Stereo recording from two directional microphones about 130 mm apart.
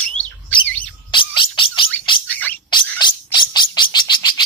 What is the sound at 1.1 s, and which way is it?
Bird, 40° left (ahead or behind).